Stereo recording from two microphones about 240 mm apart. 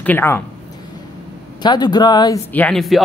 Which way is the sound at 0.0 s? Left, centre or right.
Centre.